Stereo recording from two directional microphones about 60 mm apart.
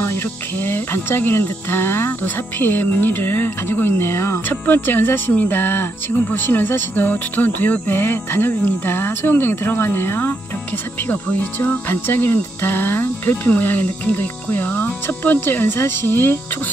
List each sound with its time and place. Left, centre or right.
0.0 s speech: left
4.6 s speech: left
11.1 s speech: left